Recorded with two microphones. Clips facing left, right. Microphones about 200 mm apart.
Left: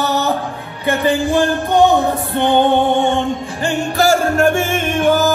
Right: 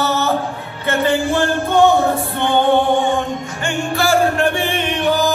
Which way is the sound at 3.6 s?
40° left (ahead or behind).